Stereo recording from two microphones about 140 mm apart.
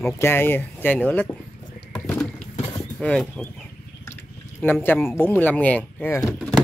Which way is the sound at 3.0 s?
5° left (ahead or behind).